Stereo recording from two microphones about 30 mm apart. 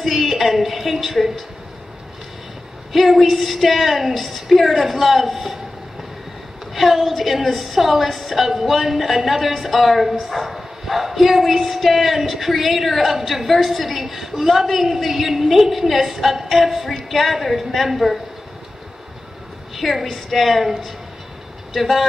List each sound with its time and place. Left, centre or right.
0.0 s a woman's voice: centre
2.9 s a woman's voice: centre
6.7 s a woman's voice: centre
19.7 s a woman's voice: centre